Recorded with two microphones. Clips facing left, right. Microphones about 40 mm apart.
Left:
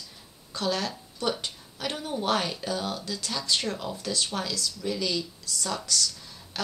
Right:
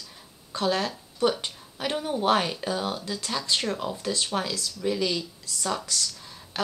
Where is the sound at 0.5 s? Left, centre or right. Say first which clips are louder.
Right 3 dB; right.